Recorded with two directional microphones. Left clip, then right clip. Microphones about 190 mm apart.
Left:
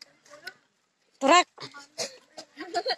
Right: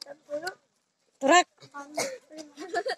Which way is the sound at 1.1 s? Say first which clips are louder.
Left 1 dB; 5° left (ahead or behind).